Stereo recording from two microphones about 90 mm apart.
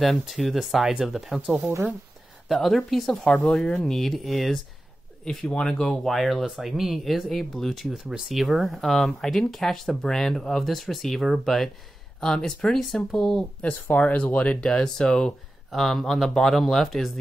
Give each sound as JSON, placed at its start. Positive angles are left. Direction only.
{"t": 0.0, "sound": "speech", "side_deg": 0}
{"t": 1.7, "sound": "speech", "side_deg": -20}
{"t": 2.4, "sound": "speech", "side_deg": 0}
{"t": 3.3, "sound": "speech", "side_deg": 10}